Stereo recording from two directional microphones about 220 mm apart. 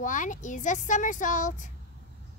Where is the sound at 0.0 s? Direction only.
35° left (ahead or behind).